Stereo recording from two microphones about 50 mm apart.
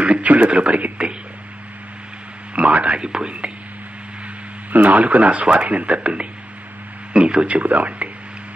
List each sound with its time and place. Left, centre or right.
0.0 s speech: right
2.5 s speech: right
4.7 s speech: right
7.2 s speech: right